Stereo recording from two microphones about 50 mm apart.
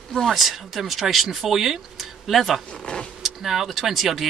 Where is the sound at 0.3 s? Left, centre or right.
Centre.